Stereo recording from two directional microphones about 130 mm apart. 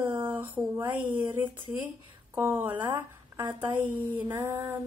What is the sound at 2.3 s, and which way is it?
A woman's voice, 15° right (ahead or behind).